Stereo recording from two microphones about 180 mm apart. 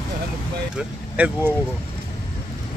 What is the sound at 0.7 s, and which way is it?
Speech, 5° right (ahead or behind).